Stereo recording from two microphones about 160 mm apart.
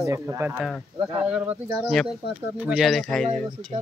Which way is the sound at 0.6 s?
Centre (ahead or behind).